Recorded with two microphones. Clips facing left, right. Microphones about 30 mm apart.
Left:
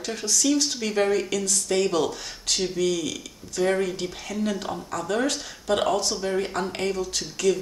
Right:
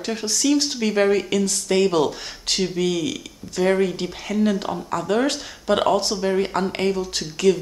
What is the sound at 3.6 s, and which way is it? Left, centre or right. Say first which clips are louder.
Speech: right 4 dB; centre.